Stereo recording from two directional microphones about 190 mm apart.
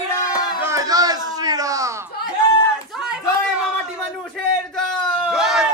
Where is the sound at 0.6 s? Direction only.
15° right (ahead or behind).